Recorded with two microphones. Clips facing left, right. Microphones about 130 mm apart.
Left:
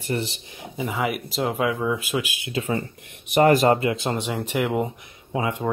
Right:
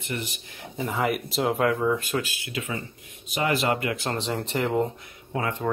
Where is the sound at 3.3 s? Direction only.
45° left (ahead or behind).